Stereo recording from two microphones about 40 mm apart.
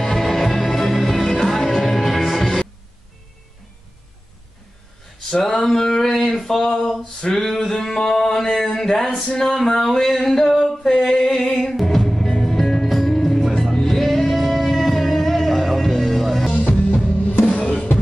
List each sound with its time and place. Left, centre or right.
0.0 s music: centre
5.7 s a sound: centre
11.1 s music: centre
16.9 s music: left